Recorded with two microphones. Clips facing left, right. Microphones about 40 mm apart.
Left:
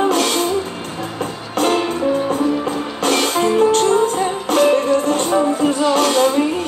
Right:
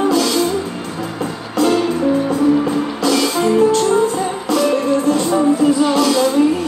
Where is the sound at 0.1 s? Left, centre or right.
Left.